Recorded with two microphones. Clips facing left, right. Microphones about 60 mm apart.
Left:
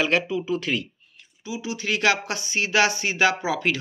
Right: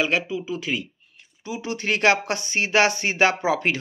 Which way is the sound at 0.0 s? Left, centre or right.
Centre.